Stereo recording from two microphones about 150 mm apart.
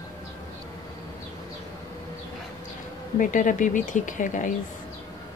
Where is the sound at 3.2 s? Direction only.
60° left (ahead or behind).